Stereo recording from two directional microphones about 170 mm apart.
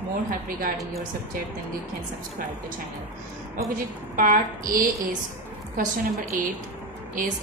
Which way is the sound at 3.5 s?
55° right (ahead or behind).